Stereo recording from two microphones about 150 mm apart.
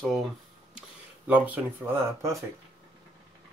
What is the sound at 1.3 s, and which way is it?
Speech, 10° right (ahead or behind).